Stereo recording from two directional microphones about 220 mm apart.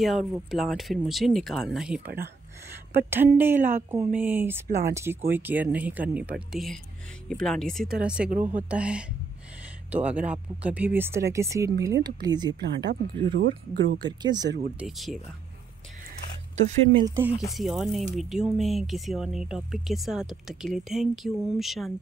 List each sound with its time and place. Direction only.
0.0 s speech: centre (ahead or behind); by 12.5 s 20° right (ahead or behind)
12.6 s speech: 50° right (ahead or behind)
14.2 s speech: 20° right (ahead or behind)
14.8 s speech: centre (ahead or behind)
16.5 s speech: 30° right (ahead or behind)
17.0 s speech: 10° right (ahead or behind)
17.6 s speech: centre (ahead or behind)